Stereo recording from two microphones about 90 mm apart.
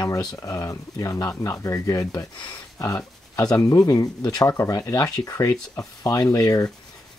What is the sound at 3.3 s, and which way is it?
Speech, 40° left (ahead or behind).